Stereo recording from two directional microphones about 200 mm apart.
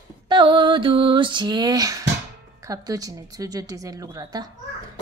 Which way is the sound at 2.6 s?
15° right (ahead or behind).